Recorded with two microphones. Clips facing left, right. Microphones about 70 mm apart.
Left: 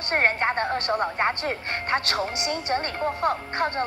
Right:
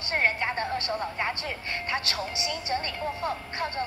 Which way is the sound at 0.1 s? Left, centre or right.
Left.